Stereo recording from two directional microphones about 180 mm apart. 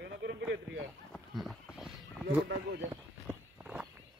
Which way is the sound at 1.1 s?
Centre (ahead or behind).